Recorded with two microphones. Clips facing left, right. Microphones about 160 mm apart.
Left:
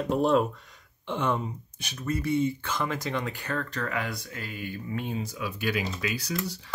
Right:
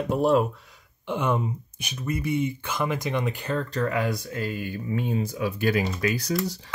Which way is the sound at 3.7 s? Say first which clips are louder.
Right 6 dB; 35° right (ahead or behind).